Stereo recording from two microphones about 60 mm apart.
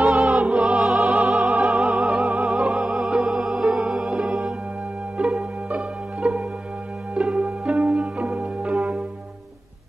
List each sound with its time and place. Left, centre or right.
0.2 s music: centre
1.5 s music: right
1.8 s music: centre